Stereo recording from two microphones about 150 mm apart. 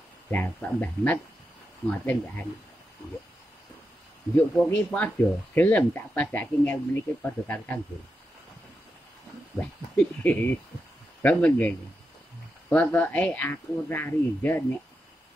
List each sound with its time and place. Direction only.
0.3 s speech: 10° left (ahead or behind)
3.0 s a sound: 20° left (ahead or behind)
4.4 s speech: 5° left (ahead or behind)
9.6 s speech: 10° left (ahead or behind)